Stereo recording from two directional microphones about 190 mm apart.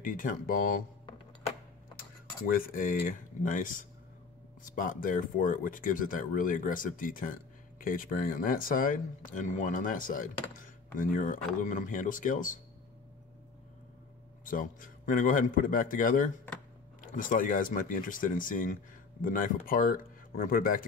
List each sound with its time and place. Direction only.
0.0 s speech: 45° left (ahead or behind)
2.5 s speech: 45° left (ahead or behind)
14.4 s speech: 45° left (ahead or behind)